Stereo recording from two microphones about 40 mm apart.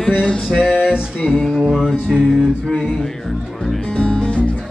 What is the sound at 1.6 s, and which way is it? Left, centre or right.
Music, centre.